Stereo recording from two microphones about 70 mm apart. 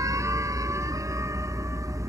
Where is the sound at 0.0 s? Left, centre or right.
Right.